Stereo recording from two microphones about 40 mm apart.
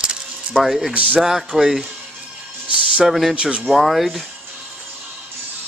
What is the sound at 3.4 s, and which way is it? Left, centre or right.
Speech, right.